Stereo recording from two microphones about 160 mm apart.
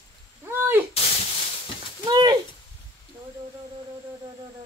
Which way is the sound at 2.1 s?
25° right (ahead or behind).